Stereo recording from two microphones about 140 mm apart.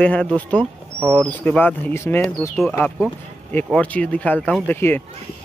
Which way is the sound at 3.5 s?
10° left (ahead or behind).